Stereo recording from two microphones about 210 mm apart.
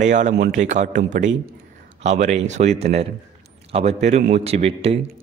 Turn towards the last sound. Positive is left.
turn(degrees=-30)  # may be behind; listen again after turning